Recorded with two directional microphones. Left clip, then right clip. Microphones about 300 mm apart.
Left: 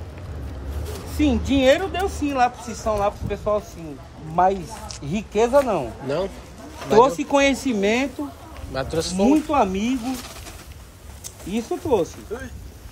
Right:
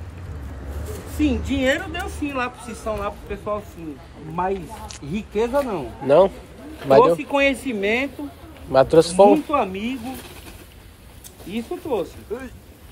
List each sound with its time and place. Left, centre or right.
1.2 s a woman's voice: left
6.0 s a man's voice: centre
7.0 s a woman's voice: left
8.7 s a man's voice: centre
9.5 s a woman's voice: left
11.5 s a woman's voice: left